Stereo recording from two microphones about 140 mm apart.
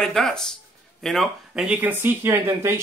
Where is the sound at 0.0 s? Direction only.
5° left (ahead or behind).